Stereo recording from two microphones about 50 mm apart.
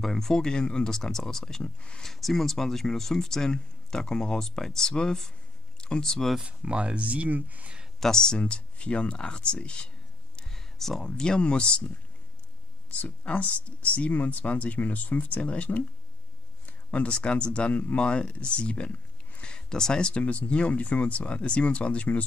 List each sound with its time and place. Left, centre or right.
0.0 s speech: centre
1.6 s speech: left
2.0 s speech: centre
6.4 s speech: right
8.0 s speech: centre
10.3 s a sound: centre
11.1 s speech: centre
12.9 s speech: left